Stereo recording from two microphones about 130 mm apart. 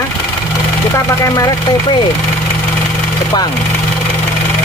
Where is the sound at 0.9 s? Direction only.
25° left (ahead or behind).